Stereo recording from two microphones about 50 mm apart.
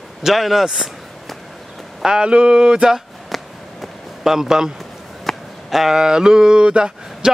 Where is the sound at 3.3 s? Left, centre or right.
Centre.